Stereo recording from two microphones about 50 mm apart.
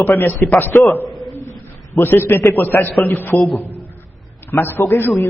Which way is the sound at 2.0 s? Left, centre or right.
Left.